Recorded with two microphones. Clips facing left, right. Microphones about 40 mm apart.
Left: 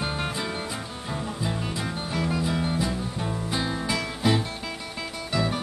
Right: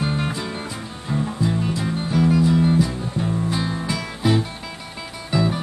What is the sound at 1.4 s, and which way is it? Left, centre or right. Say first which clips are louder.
Music: right 7 dB; centre.